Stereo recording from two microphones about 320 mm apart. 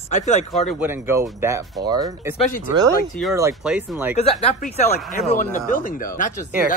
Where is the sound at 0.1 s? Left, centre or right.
Left.